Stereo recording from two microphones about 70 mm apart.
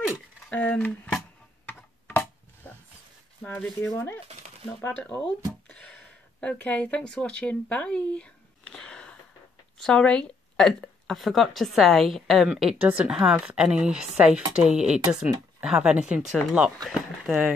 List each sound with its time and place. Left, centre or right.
0.5 s speech: left
2.0 s a sound: left
3.5 s speech: centre
4.8 s speech: left
5.7 s a sound: centre
9.8 s a woman's voice: centre
12.8 s a woman's voice: centre